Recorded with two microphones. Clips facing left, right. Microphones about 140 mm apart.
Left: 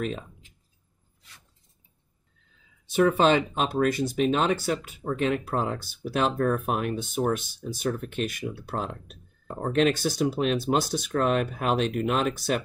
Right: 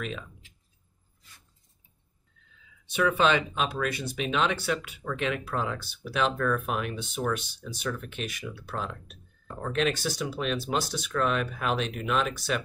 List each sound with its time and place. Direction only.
2.9 s speech: 45° left (ahead or behind)